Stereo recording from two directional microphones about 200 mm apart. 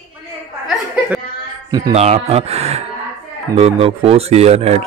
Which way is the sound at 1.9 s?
30° right (ahead or behind).